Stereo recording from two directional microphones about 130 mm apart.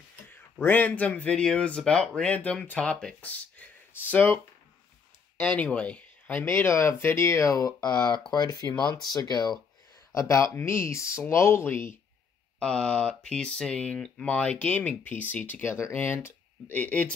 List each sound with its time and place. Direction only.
0.7 s speech: 15° left (ahead or behind)
5.4 s speech: 10° left (ahead or behind)
12.5 s speech: 10° left (ahead or behind)